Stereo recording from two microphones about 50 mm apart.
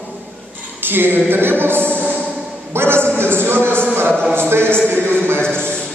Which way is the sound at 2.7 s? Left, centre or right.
Right.